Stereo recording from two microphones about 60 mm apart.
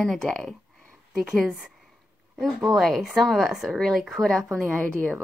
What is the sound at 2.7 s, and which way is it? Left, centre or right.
Speech, centre.